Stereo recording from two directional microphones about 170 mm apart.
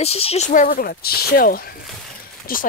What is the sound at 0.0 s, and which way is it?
Speech, 35° left (ahead or behind).